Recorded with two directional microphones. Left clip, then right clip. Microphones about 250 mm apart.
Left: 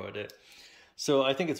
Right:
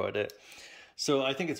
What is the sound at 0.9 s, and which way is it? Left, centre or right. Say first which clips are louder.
Speech: left 3 dB; centre.